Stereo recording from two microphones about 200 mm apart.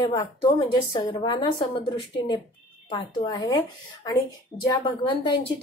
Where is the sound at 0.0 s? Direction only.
20° left (ahead or behind).